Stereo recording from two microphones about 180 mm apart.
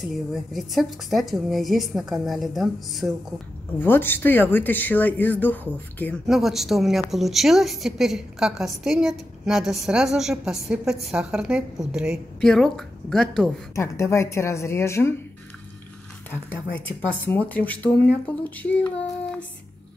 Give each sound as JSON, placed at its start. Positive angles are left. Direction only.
{"t": 0.1, "sound": "a woman's voice", "side_deg": 0}
{"t": 3.8, "sound": "speech", "side_deg": 10}
{"t": 6.2, "sound": "a woman's voice", "side_deg": 0}
{"t": 13.7, "sound": "speech", "side_deg": 15}
{"t": 17.3, "sound": "speech", "side_deg": 10}